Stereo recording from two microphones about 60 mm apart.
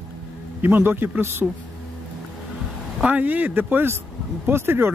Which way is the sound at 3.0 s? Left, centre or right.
Right.